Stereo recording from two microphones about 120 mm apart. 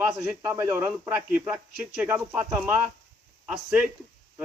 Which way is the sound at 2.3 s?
20° right (ahead or behind).